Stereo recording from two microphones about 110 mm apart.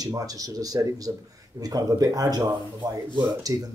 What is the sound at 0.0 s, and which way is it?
Speech, 35° right (ahead or behind).